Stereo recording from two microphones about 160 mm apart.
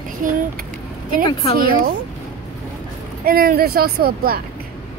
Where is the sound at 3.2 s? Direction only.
65° right (ahead or behind).